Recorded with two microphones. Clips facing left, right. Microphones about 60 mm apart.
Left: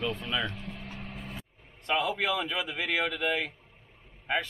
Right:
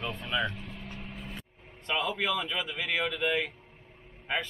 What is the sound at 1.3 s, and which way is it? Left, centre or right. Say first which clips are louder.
Speech: even; centre.